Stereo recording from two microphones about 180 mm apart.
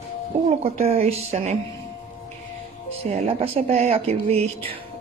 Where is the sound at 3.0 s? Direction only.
35° right (ahead or behind).